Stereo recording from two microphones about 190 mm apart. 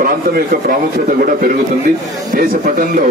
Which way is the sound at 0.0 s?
45° right (ahead or behind).